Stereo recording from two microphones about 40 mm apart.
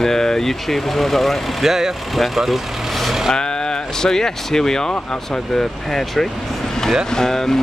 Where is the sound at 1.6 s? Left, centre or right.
Centre.